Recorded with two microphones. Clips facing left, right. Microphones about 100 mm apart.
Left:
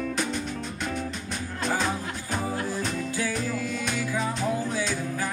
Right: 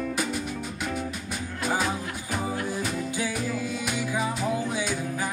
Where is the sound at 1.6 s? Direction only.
10° right (ahead or behind).